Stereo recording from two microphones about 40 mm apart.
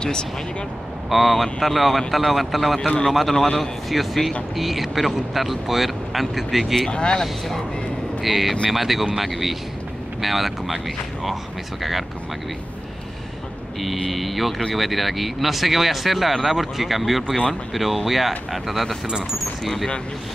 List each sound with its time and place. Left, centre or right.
0.0 s speech: left
1.1 s speech: centre
6.9 s speech: left
7.2 s speech: centre
13.7 s speech: centre
19.0 s speech: centre
19.6 s speech: centre